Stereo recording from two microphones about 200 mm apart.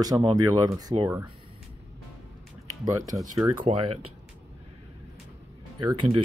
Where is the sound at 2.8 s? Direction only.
15° right (ahead or behind).